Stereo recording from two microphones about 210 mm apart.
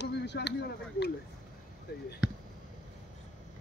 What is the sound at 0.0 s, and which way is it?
Speech, 55° left (ahead or behind).